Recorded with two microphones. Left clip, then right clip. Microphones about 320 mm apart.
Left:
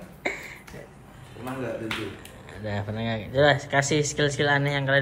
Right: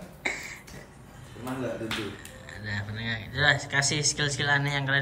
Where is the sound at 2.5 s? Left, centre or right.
Centre.